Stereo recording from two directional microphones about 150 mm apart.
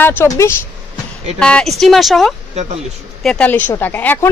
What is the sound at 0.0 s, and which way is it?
Speech, 15° left (ahead or behind).